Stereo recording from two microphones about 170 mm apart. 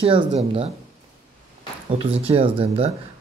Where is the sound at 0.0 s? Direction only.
30° right (ahead or behind).